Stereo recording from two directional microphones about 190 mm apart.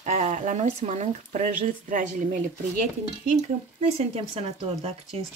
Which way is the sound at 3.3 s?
35° right (ahead or behind).